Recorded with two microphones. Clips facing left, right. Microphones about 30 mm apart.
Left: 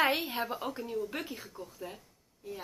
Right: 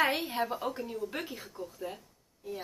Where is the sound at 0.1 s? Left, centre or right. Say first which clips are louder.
Right 1 dB; centre.